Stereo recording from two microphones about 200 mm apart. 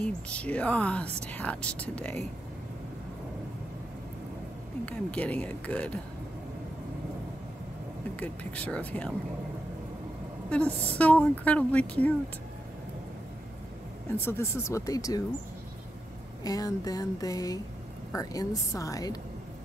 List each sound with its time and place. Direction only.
0.0 s a woman's voice: 5° left (ahead or behind)
4.8 s a woman's voice: 5° left (ahead or behind)
8.2 s a woman's voice: 5° left (ahead or behind)
10.5 s a woman's voice: 5° left (ahead or behind)
14.1 s a woman's voice: 10° left (ahead or behind)
16.4 s a woman's voice: 20° left (ahead or behind)